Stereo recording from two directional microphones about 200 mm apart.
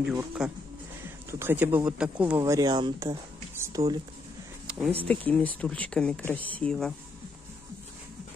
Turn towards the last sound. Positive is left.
turn(degrees=5)  # may be behind; listen again after turning